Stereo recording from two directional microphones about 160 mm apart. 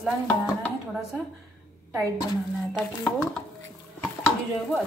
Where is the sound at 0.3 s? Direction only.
5° left (ahead or behind).